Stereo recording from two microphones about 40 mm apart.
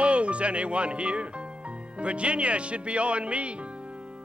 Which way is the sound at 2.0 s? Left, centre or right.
Right.